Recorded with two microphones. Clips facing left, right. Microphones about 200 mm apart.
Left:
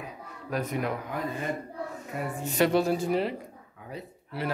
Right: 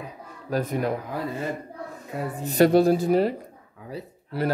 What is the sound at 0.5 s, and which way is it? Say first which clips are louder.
Speech: right 5 dB; 35° right (ahead or behind).